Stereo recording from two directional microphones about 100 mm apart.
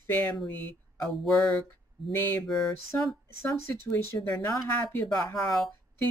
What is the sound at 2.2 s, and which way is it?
Speech, 20° left (ahead or behind).